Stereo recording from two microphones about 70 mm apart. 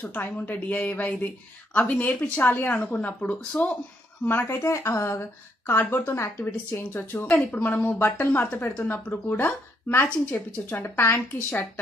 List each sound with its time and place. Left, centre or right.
0.0 s a woman's voice: left
4.2 s speech: left
4.6 s a woman's voice: left
6.4 s a woman's voice: left
7.2 s a woman's voice: centre; by 10.0 s left
10.0 s a woman's voice: left